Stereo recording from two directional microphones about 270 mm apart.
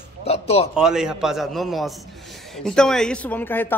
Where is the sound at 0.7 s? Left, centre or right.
Centre.